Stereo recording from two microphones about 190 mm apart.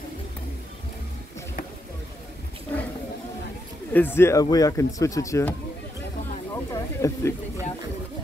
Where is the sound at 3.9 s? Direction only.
10° left (ahead or behind).